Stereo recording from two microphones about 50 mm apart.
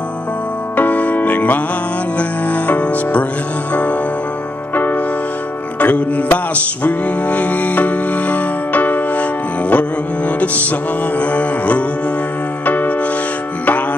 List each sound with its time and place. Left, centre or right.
0.7 s music: left
5.8 s music: left